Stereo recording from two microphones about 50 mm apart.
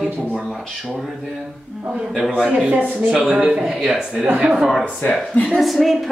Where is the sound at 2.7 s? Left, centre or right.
Right.